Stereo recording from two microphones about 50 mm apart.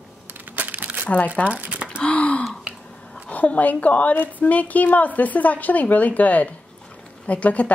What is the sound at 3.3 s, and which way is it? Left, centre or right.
A woman's voice, left.